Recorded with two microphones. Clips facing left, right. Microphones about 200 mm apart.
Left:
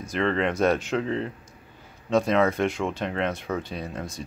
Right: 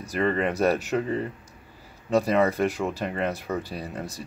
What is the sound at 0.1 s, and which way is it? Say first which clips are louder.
Speech: even; 5° right (ahead or behind).